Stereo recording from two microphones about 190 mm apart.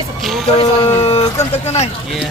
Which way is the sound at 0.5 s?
30° left (ahead or behind).